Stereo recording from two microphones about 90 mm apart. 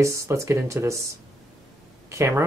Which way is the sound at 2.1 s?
30° right (ahead or behind).